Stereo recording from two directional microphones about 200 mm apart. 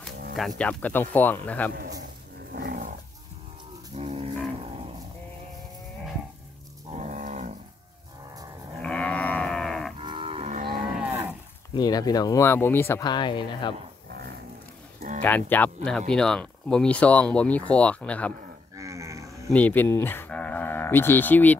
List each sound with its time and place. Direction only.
0.6 s speech: 5° left (ahead or behind)
2.6 s dog: 40° right (ahead or behind)
3.9 s cattle: 30° right (ahead or behind)
6.9 s cattle: 35° right (ahead or behind)
8.8 s livestock: 5° left (ahead or behind)
9.9 s livestock: 25° right (ahead or behind)
11.0 s cattle: 10° right (ahead or behind)
11.7 s speech: 20° left (ahead or behind)
14.0 s a sound: 55° right (ahead or behind)
15.0 s a sound: 40° right (ahead or behind)
15.2 s speech: 10° left (ahead or behind)
18.8 s cattle: 15° right (ahead or behind)
19.5 s livestock: 10° left (ahead or behind)